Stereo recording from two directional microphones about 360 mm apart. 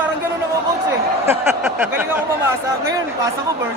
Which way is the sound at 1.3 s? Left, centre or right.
Centre.